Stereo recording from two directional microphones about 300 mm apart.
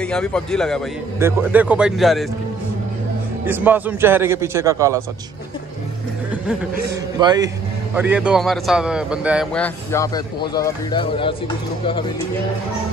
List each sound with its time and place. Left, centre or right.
0.0 s a man's voice: centre
3.4 s a man's voice: centre
7.2 s a man's voice: centre